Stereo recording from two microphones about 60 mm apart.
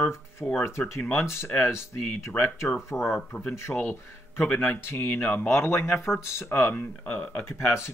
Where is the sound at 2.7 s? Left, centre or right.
Centre.